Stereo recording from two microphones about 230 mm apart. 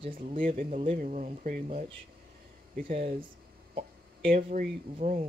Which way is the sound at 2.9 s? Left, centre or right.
Right.